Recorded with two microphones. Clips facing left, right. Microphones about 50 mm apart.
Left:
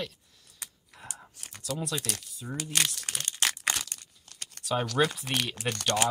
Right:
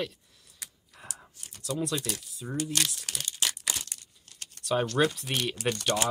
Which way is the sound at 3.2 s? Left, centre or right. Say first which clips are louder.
Left 3 dB; left.